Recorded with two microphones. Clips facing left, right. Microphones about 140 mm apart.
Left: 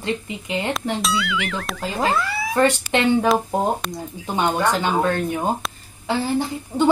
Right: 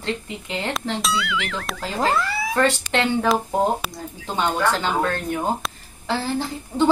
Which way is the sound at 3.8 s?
5° right (ahead or behind).